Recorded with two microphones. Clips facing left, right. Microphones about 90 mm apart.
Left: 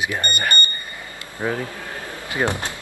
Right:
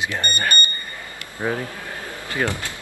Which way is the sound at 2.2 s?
20° left (ahead or behind).